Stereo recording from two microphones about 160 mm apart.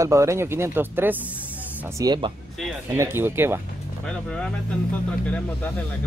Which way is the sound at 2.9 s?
15° right (ahead or behind).